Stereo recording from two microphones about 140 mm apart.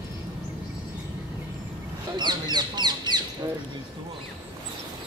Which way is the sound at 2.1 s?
30° right (ahead or behind).